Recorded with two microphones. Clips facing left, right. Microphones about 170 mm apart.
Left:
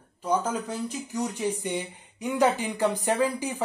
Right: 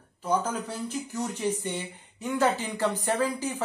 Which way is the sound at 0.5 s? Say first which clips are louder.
Left 2 dB; 10° left (ahead or behind).